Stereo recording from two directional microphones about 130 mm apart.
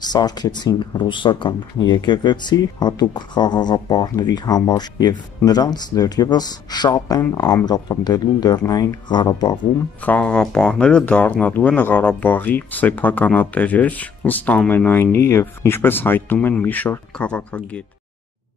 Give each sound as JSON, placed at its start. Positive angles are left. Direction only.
{"t": 0.0, "sound": "speech", "side_deg": 30}
{"t": 10.0, "sound": "speech", "side_deg": 10}